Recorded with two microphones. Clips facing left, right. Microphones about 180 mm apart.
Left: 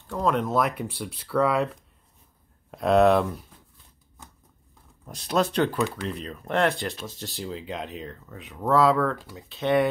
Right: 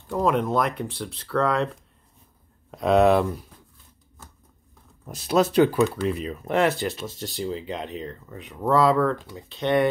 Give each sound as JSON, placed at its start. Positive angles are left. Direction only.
{"t": 0.1, "sound": "speech", "side_deg": -5}
{"t": 2.7, "sound": "speech", "side_deg": 0}
{"t": 4.2, "sound": "scissors", "side_deg": 15}
{"t": 5.0, "sound": "speech", "side_deg": -5}